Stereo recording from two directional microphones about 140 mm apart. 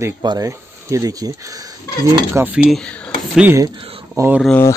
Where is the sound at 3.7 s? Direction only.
40° right (ahead or behind).